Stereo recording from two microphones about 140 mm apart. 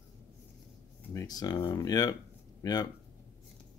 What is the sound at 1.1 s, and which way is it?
Speech, 25° left (ahead or behind).